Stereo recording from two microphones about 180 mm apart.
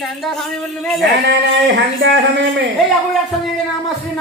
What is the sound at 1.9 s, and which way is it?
Speech, 75° right (ahead or behind).